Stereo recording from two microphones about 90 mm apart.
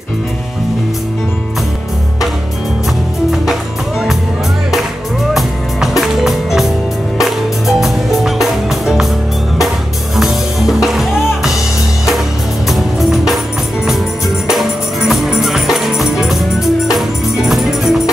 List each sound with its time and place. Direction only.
5.3 s music: 5° right (ahead or behind)
10.1 s music: centre (ahead or behind)
12.6 s music: centre (ahead or behind)
14.6 s music: centre (ahead or behind)